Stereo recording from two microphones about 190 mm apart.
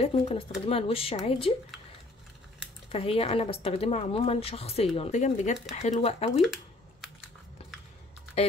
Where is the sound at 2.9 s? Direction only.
30° left (ahead or behind).